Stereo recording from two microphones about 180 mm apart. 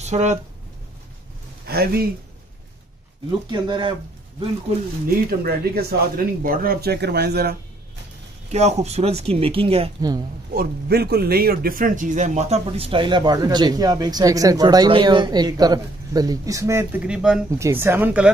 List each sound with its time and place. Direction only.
0.0 s speech: 40° right (ahead or behind)
1.7 s speech: 55° right (ahead or behind)
3.3 s a man's voice: 25° right (ahead or behind)
5.0 s speech: 60° right (ahead or behind)
8.5 s speech: 40° right (ahead or behind)
10.5 s a man's voice: 60° right (ahead or behind); by 17.5 s 5° right (ahead or behind)
17.5 s speech: 15° right (ahead or behind)